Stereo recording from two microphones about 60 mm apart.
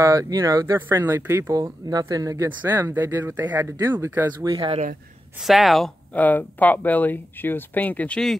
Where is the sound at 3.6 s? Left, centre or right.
Right.